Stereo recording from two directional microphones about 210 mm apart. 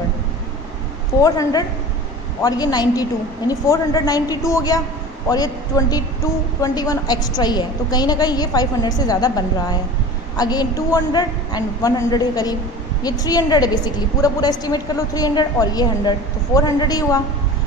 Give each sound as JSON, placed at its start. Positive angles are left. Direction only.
{"t": 1.2, "sound": "a woman's voice", "side_deg": 15}